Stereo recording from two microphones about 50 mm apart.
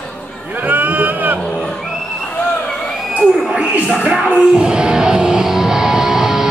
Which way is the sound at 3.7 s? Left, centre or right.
Right.